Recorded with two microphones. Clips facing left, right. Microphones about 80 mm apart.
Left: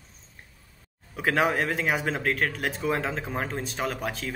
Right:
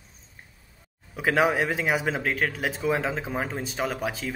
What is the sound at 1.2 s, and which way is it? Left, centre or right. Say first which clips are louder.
Speech: right 2 dB; centre.